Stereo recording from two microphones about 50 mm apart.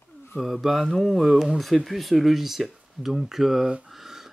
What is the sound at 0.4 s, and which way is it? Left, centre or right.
Speech, centre.